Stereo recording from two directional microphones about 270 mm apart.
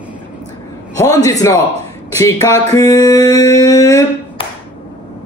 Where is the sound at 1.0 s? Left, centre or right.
Centre.